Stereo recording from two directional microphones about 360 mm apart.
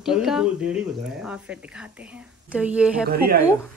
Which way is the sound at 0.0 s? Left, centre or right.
Centre.